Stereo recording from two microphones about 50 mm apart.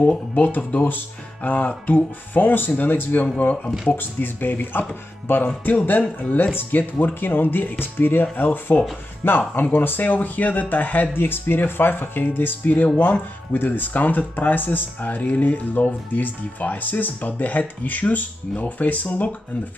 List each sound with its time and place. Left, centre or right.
0.1 s speech: left
3.9 s speech: left
5.7 s speech: left